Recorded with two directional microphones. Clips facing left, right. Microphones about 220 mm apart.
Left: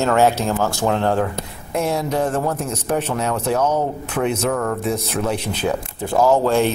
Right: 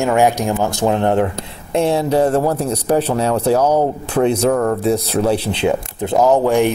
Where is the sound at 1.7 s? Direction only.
30° right (ahead or behind).